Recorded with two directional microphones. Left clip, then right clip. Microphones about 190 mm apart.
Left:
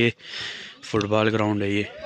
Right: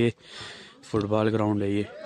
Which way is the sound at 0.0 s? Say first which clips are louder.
Left 4 dB; 5° right (ahead or behind).